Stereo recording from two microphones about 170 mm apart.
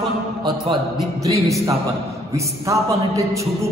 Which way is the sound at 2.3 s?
20° right (ahead or behind).